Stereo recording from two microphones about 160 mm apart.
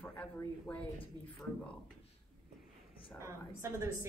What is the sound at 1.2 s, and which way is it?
Speech, 25° right (ahead or behind).